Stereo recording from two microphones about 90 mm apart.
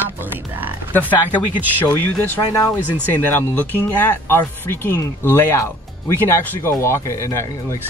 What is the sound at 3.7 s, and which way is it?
Speech, 20° left (ahead or behind).